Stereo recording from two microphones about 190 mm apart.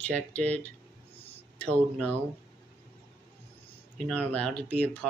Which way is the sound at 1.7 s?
5° left (ahead or behind).